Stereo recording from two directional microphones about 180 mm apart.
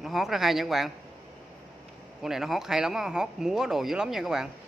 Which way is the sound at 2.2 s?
Centre (ahead or behind).